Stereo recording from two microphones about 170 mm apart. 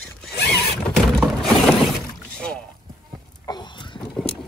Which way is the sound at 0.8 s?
Centre (ahead or behind).